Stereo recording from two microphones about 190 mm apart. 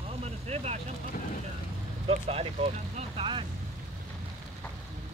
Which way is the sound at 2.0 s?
30° right (ahead or behind).